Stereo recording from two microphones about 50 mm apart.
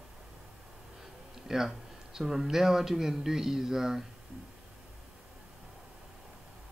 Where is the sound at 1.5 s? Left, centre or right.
Centre.